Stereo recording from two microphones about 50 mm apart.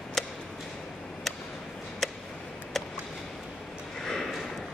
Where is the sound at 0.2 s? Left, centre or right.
Centre.